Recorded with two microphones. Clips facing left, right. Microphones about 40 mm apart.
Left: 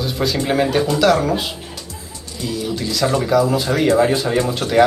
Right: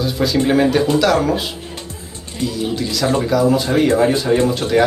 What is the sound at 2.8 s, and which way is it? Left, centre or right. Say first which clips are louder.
Speech: even; centre.